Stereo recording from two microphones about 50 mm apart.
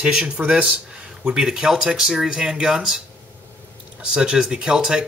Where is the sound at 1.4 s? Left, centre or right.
Centre.